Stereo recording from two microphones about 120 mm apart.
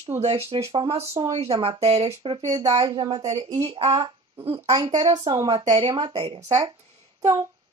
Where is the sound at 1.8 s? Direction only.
55° right (ahead or behind).